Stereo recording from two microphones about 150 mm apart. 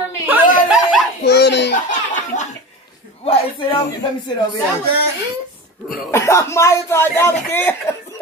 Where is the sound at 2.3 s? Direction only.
55° left (ahead or behind).